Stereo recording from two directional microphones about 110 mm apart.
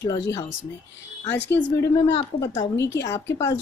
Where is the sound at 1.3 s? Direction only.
25° left (ahead or behind).